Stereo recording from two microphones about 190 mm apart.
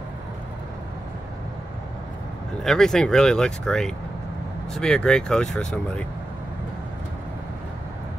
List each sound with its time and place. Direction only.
2.6 s speech: centre (ahead or behind)